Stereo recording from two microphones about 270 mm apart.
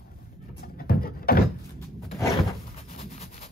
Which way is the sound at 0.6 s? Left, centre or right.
Left.